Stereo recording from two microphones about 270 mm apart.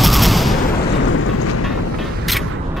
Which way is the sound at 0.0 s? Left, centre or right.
Centre.